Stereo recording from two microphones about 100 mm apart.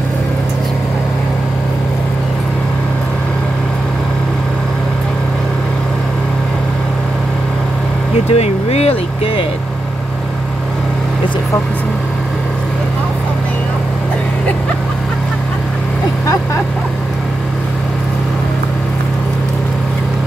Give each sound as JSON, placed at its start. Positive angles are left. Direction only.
{"t": 8.3, "sound": "speech", "side_deg": 90}